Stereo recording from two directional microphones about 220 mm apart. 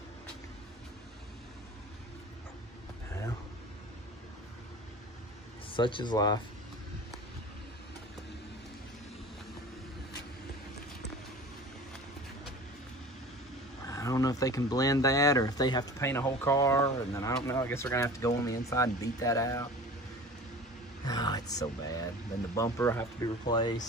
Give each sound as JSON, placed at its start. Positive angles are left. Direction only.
{"t": 5.8, "sound": "speech", "side_deg": 20}
{"t": 13.8, "sound": "speech", "side_deg": 15}
{"t": 21.0, "sound": "speech", "side_deg": 20}